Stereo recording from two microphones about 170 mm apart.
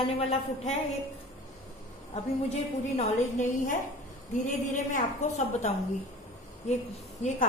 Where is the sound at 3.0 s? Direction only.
45° left (ahead or behind).